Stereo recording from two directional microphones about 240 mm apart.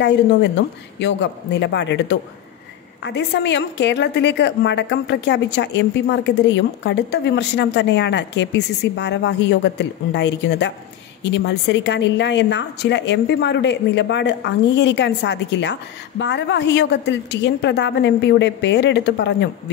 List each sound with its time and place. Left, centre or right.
0.0 s speech: left